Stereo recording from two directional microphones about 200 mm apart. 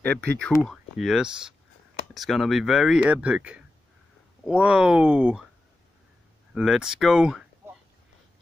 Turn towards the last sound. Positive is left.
turn(degrees=-5)  # may be behind; listen again after turning